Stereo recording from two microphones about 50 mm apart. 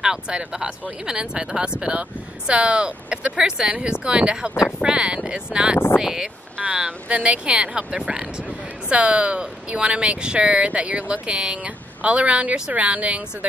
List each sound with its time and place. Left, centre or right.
0.0 s speech: centre